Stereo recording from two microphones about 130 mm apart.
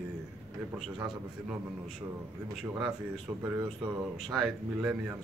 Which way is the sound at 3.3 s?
30° right (ahead or behind).